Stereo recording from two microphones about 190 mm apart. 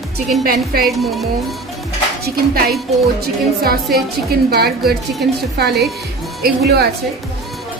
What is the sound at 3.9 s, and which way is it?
Speech, 55° right (ahead or behind).